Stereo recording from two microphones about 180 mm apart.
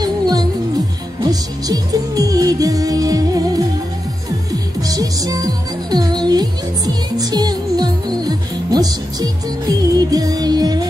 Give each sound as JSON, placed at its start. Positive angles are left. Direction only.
{"t": 0.0, "sound": "music", "side_deg": -20}